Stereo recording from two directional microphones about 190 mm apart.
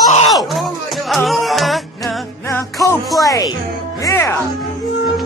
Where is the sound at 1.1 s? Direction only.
Centre (ahead or behind).